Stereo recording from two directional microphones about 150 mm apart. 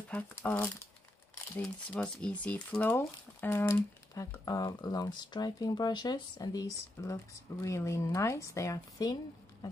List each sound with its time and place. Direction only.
0.1 s speech: 10° left (ahead or behind)